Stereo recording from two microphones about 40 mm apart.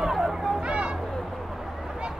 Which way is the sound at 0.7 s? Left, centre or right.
Right.